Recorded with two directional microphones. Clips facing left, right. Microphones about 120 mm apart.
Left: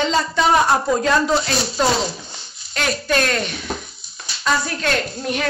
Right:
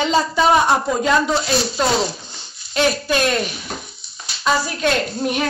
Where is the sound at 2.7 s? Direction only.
20° right (ahead or behind).